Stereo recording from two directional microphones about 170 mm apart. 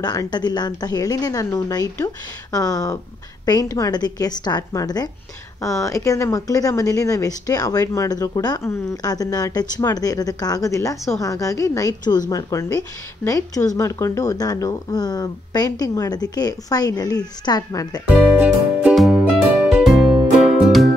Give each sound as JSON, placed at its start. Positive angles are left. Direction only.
{"t": 0.0, "sound": "speech", "side_deg": 25}
{"t": 18.3, "sound": "music", "side_deg": -5}